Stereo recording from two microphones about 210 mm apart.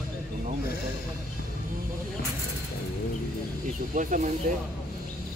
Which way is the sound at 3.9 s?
40° right (ahead or behind).